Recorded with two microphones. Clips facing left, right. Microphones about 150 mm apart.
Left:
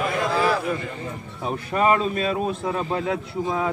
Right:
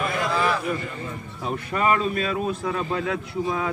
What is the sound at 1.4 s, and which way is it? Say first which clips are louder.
A man's voice: left 3 dB; 25° left (ahead or behind).